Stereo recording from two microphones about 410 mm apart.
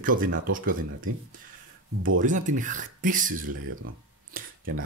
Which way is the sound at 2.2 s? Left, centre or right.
Centre.